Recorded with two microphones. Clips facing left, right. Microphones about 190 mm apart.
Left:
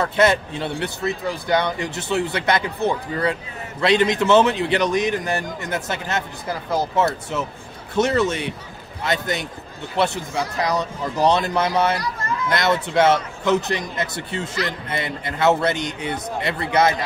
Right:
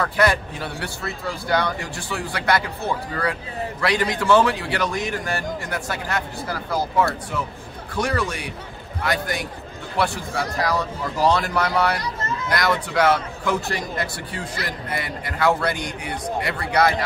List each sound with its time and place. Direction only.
0.0 s a man's voice: 25° left (ahead or behind)